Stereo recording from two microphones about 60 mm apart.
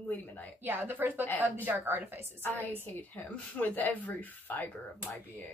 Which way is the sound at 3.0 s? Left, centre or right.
Left.